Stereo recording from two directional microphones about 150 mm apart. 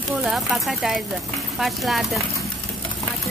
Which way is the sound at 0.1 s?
Centre (ahead or behind).